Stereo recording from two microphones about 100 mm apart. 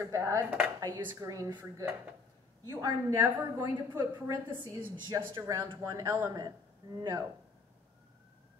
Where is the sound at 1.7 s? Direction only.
25° right (ahead or behind).